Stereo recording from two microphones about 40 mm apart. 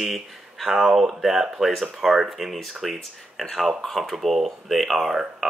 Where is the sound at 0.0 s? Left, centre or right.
Centre.